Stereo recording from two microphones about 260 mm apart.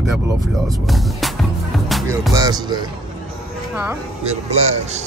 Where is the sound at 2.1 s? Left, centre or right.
Centre.